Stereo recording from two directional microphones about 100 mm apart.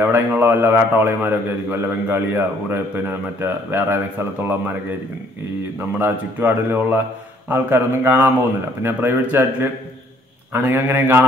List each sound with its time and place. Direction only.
0.0 s a man's voice: 20° right (ahead or behind)
5.9 s a man's voice: 20° right (ahead or behind)